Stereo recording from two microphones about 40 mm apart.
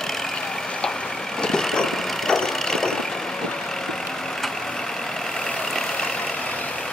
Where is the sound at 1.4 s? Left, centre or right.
Centre.